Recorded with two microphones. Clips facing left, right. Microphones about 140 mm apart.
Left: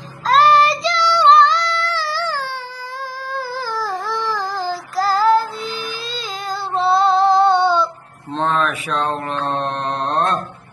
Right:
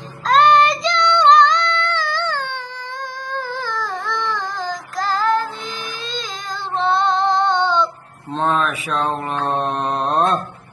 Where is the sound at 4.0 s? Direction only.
5° left (ahead or behind).